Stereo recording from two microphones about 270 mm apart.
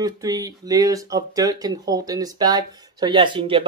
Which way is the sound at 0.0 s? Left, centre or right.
Centre.